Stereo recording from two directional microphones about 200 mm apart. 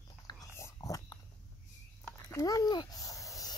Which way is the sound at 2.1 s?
15° left (ahead or behind).